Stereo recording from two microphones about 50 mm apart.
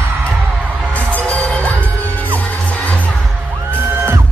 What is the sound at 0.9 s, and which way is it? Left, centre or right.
Music, left.